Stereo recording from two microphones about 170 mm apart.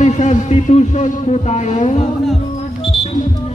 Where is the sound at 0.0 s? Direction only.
45° left (ahead or behind).